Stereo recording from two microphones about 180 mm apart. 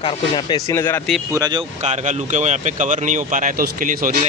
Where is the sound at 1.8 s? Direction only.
40° right (ahead or behind).